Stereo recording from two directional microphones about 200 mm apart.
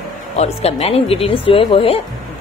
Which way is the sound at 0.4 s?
30° left (ahead or behind).